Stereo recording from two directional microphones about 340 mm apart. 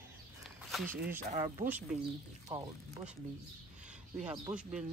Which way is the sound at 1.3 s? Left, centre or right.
Centre.